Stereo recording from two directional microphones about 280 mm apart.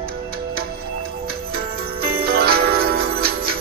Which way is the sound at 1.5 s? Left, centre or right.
Right.